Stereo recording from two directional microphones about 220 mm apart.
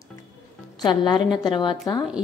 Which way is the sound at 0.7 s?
20° left (ahead or behind).